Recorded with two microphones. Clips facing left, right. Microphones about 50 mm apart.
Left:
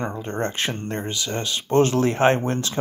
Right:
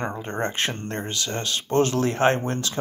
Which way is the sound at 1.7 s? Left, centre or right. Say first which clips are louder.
Left 3 dB; left.